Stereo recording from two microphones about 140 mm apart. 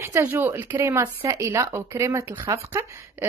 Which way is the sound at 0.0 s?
15° right (ahead or behind).